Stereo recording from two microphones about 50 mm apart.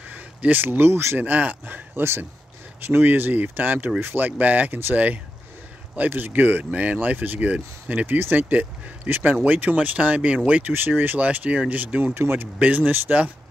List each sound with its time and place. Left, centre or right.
0.5 s speech: right
1.1 s speech: right
6.7 s speech: right
12.1 s speech: right